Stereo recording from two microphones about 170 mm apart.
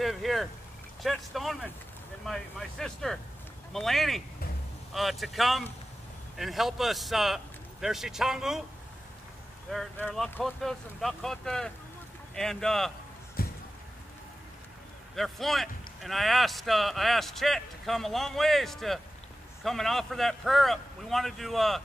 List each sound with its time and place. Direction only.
0.0 s boat: centre (ahead or behind)
1.0 s speech: centre (ahead or behind)
9.7 s speech: 5° left (ahead or behind)
13.4 s a sound: 60° left (ahead or behind)
15.1 s speech: centre (ahead or behind)